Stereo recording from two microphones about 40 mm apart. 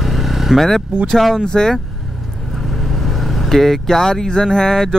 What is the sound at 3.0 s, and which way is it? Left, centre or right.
Speech, centre.